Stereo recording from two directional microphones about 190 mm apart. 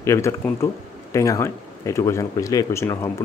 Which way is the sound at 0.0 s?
15° left (ahead or behind).